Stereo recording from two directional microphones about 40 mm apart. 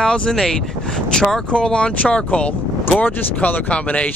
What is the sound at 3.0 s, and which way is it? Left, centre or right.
Speech, left.